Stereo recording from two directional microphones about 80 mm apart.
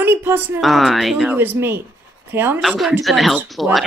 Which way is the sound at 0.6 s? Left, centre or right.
Centre.